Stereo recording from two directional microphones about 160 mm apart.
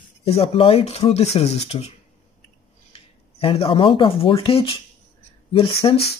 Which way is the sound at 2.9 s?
35° left (ahead or behind).